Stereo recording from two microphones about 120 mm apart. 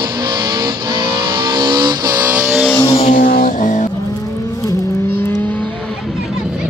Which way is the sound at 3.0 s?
90° left.